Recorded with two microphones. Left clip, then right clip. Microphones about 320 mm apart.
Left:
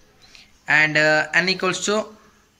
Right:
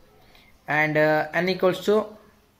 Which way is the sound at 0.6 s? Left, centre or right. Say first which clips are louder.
Left 4 dB; left.